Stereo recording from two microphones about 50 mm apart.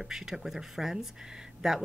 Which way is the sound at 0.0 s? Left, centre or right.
Centre.